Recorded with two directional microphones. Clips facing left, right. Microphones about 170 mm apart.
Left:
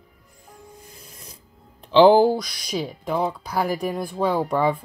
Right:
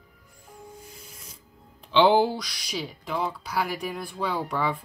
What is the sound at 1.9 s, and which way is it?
Speech, 40° left (ahead or behind).